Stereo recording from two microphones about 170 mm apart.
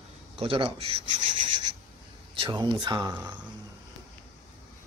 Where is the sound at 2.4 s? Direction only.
30° right (ahead or behind).